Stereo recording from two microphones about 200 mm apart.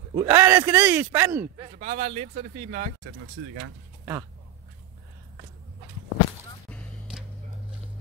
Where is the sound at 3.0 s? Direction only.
80° right.